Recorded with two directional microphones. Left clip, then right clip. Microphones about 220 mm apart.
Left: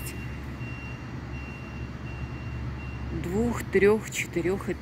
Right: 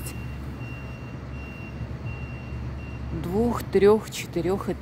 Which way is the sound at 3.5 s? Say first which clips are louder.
Right 3 dB; 10° right (ahead or behind).